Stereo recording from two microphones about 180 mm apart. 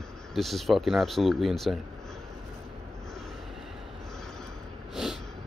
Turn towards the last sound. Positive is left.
turn(degrees=0)  # may be behind; listen again after turning